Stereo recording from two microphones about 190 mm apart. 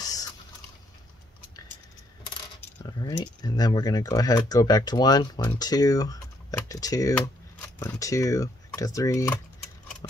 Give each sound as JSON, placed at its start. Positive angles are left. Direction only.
{"t": 0.0, "sound": "drip", "side_deg": 20}
{"t": 2.8, "sound": "speech", "side_deg": 20}